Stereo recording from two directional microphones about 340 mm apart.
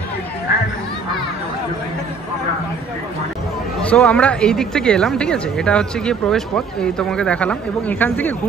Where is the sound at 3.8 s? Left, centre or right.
Centre.